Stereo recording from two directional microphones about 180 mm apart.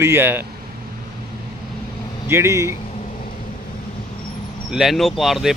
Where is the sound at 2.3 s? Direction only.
15° right (ahead or behind).